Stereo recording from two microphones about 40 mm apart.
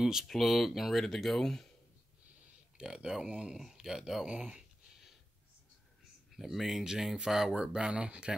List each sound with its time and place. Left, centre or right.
0.0 s speech: centre
0.3 s speech: centre
2.8 s speech: centre
3.5 s speech: centre
4.3 s speech: right
6.3 s speech: centre
7.9 s speech: right